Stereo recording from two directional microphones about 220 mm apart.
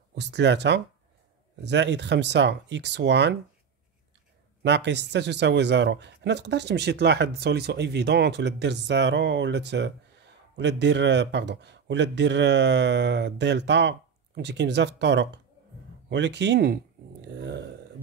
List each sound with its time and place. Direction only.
0.1 s speech: 50° right (ahead or behind)
4.6 s speech: 50° right (ahead or behind)